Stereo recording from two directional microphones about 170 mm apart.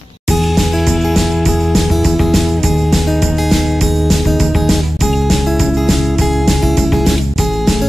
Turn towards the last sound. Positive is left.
turn(degrees=0)  # may be behind; listen again after turning